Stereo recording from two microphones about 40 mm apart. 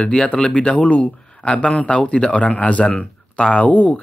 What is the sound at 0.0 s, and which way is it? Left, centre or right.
Speech, left.